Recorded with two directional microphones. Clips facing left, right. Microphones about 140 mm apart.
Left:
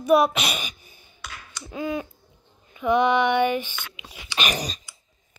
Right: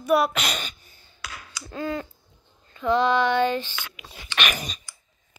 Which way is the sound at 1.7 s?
15° left (ahead or behind).